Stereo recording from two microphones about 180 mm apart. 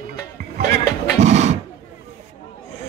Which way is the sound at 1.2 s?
40° right (ahead or behind).